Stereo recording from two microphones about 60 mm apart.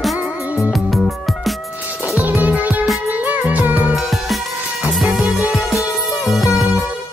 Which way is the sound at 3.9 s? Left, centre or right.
Centre.